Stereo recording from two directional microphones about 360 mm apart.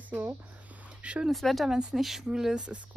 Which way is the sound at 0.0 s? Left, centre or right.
Centre.